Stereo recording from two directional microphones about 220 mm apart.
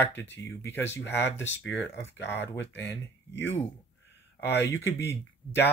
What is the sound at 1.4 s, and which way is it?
Speech, 55° left (ahead or behind).